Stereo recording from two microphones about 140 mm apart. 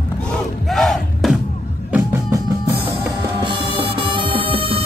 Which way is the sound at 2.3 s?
20° right (ahead or behind).